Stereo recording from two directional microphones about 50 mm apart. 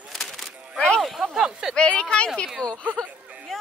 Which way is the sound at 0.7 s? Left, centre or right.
Centre.